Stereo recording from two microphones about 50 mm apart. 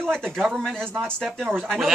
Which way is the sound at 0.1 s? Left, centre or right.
Centre.